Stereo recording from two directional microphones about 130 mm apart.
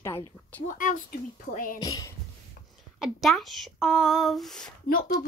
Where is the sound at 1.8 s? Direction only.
30° left (ahead or behind).